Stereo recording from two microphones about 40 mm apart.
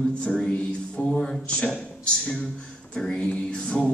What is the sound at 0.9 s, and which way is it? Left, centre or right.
Speech, left.